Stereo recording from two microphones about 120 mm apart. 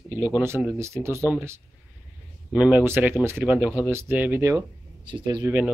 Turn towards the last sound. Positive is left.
turn(degrees=-15)  # may be behind; listen again after turning